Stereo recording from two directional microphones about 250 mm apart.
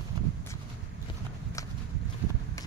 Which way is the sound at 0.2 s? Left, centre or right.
Right.